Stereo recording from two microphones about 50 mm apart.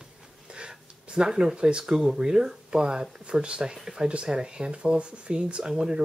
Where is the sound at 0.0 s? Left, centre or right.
Centre.